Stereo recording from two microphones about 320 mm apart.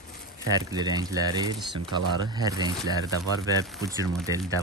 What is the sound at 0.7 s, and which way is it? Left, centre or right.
Speech, centre.